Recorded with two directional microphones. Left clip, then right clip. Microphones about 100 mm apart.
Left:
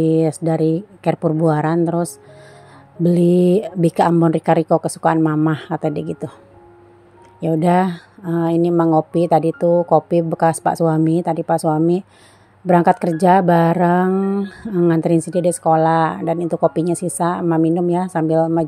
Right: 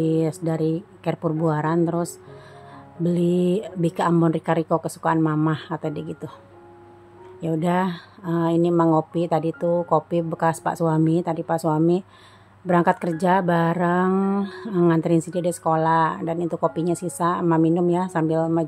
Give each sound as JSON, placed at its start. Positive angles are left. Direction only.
{"t": 0.0, "sound": "a woman's voice", "side_deg": 35}
{"t": 7.3, "sound": "a woman's voice", "side_deg": 40}
{"t": 14.1, "sound": "a sound", "side_deg": 15}
{"t": 14.5, "sound": "a woman's voice", "side_deg": 40}